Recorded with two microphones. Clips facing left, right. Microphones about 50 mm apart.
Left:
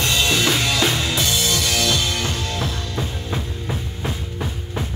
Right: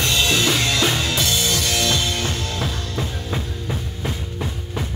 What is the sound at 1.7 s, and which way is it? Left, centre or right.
Music, centre.